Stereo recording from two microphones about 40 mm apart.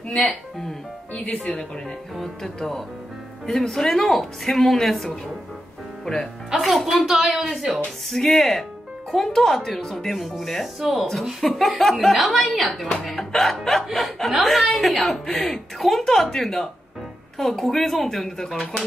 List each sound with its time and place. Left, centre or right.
0.1 s a woman's voice: centre
1.1 s speech: left
2.1 s a woman's voice: centre
6.6 s a woman's voice: centre